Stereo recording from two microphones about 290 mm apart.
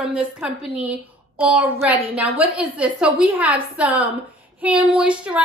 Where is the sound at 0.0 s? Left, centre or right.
Centre.